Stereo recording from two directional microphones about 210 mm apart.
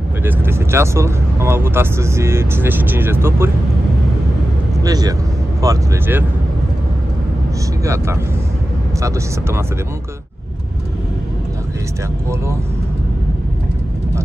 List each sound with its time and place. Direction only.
0.2 s speech: 10° right (ahead or behind)
4.8 s speech: 15° right (ahead or behind)
7.8 s speech: 15° right (ahead or behind)